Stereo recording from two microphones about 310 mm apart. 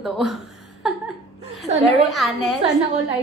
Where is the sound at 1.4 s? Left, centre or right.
Right.